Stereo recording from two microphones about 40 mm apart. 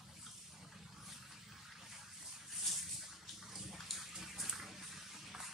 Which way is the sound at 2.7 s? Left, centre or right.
Centre.